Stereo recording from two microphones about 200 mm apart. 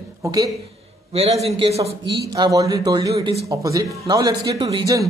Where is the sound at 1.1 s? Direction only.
30° right (ahead or behind).